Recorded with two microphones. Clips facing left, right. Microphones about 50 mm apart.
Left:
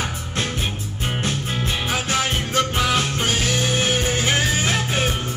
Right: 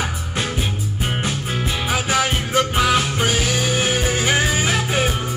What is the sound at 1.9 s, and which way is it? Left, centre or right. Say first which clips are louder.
Music: right 4 dB; centre.